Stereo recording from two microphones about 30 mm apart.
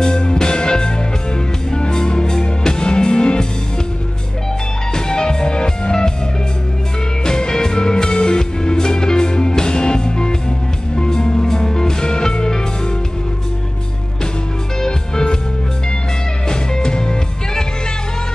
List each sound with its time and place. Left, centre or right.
0.0 s music: left
4.9 s music: left
7.2 s music: left
14.8 s music: left
16.4 s music: left